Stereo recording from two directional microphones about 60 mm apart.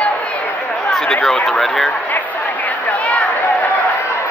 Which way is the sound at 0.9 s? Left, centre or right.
Centre.